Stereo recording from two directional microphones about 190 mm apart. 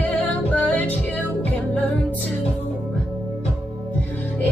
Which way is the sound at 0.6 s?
10° left (ahead or behind).